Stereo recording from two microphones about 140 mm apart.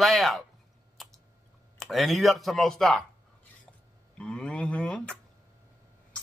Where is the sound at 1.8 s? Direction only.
Centre (ahead or behind).